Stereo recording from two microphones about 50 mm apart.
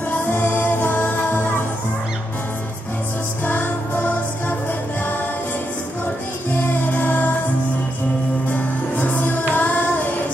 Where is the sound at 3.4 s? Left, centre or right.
Left.